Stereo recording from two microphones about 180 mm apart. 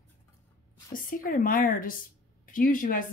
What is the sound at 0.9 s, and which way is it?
Speech, 50° left (ahead or behind).